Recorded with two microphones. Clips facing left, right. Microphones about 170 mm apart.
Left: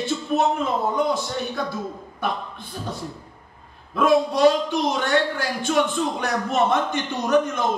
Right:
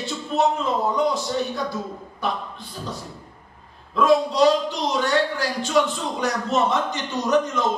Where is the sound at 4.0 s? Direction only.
55° left (ahead or behind).